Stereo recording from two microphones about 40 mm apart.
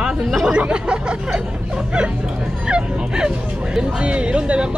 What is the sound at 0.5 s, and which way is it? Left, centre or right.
Speech, right.